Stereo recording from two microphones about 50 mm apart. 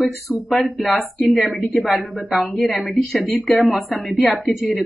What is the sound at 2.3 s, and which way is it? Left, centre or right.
Speech, centre.